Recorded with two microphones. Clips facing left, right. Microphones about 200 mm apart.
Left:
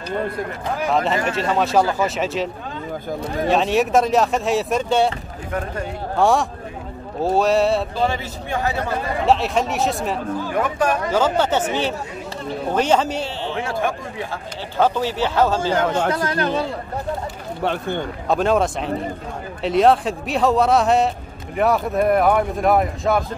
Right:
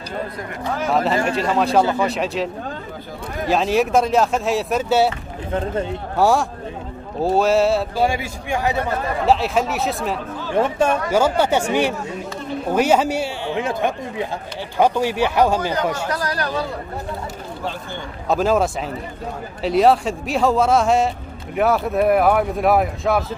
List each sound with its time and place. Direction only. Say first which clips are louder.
0.9 s speech: right 2 dB; centre (ahead or behind)
6.1 s speech: even; centre (ahead or behind)
9.2 s speech: even; centre (ahead or behind)
10.5 s speech: right 4 dB; 25° right (ahead or behind)
11.1 s a man's voice: right 1 dB; 10° right (ahead or behind)
16.1 s a man's voice: left 3 dB; 25° left (ahead or behind)
17.6 s speech: left 8 dB; 60° left (ahead or behind)
18.3 s speech: even; centre (ahead or behind)